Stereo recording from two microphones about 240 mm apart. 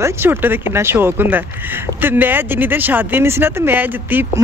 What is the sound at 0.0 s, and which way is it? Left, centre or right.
A man's voice, centre.